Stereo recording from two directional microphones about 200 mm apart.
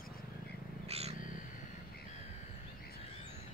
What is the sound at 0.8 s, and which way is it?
Bird, 30° right (ahead or behind).